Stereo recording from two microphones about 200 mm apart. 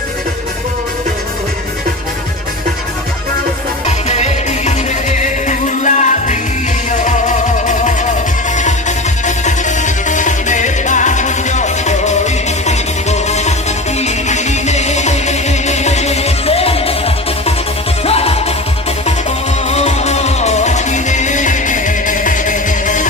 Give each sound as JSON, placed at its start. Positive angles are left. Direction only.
{"t": 3.8, "sound": "music", "side_deg": 35}
{"t": 19.7, "sound": "music", "side_deg": 30}